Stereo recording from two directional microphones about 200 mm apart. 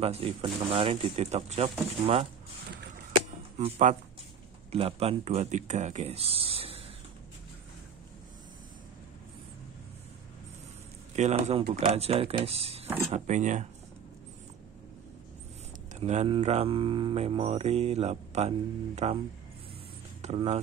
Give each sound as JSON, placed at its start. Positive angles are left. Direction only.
{"t": 0.0, "sound": "speech", "side_deg": -30}
{"t": 3.5, "sound": "speech", "side_deg": -35}
{"t": 11.1, "sound": "speech", "side_deg": -35}
{"t": 15.9, "sound": "speech", "side_deg": -35}